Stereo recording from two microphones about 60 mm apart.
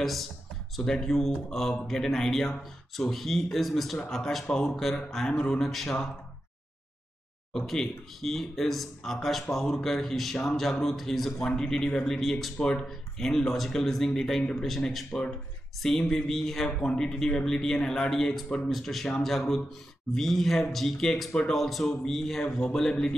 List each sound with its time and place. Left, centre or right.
0.0 s speech: centre
7.5 s speech: centre
12.5 s speech: centre